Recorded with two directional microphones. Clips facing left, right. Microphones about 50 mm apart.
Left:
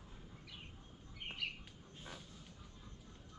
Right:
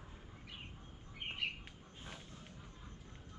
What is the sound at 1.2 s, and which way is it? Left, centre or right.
Squawk, right.